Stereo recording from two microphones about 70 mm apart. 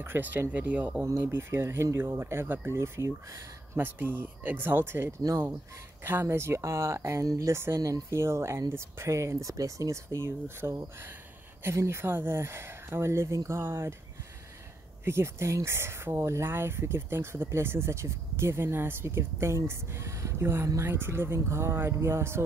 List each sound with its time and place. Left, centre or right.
0.0 s speech: right
1.2 s speech: right
7.2 s speech: right
7.5 s speech: right
7.8 s speech: right
15.0 s speech: right